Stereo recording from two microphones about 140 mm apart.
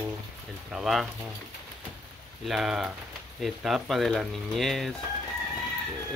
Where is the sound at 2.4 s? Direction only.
5° right (ahead or behind).